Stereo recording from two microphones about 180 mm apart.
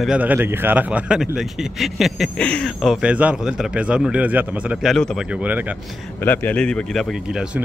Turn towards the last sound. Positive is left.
turn(degrees=-5)  # may be behind; listen again after turning